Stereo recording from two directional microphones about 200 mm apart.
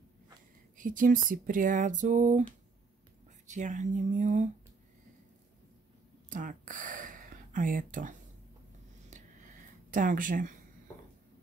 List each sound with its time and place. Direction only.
0.7 s speech: 40° right (ahead or behind)
3.4 s speech: 35° right (ahead or behind)
6.2 s speech: 40° right (ahead or behind)
9.1 s a sound: 40° right (ahead or behind)